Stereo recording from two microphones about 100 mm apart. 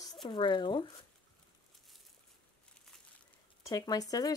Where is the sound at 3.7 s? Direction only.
40° left (ahead or behind).